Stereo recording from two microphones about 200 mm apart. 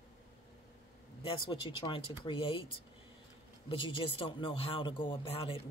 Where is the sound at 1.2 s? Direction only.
25° left (ahead or behind).